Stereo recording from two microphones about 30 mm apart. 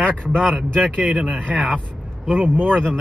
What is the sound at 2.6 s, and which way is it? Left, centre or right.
Speech, left.